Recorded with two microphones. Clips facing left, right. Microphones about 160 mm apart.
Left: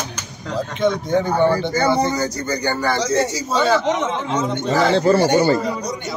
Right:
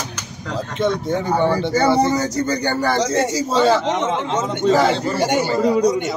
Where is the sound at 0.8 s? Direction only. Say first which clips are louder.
Left 2 dB; centre (ahead or behind).